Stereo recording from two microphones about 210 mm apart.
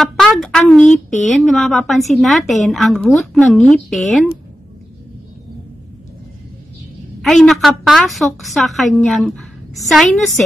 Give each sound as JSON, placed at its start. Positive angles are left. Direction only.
{"t": 0.0, "sound": "a woman's voice", "side_deg": 0}
{"t": 7.2, "sound": "a woman's voice", "side_deg": 0}